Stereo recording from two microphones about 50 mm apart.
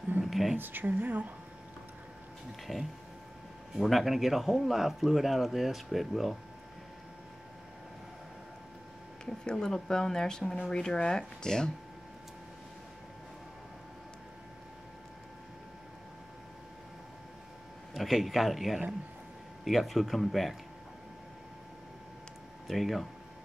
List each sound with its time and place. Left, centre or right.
0.2 s a sound: centre
0.6 s speech: right
2.6 s speech: centre
9.2 s speech: centre
17.9 s speech: centre
22.7 s speech: centre